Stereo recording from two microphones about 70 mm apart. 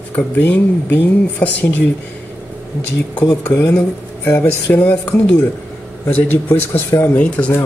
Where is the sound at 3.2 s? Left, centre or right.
Left.